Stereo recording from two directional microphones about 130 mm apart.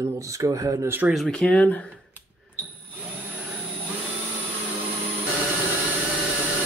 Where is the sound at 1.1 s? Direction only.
Centre (ahead or behind).